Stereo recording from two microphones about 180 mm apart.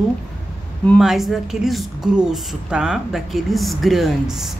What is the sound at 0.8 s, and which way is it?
A woman's voice, centre (ahead or behind).